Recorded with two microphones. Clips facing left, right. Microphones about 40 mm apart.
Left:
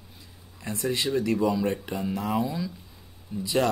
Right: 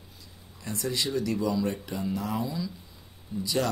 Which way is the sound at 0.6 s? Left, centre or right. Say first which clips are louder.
Left 3 dB; left.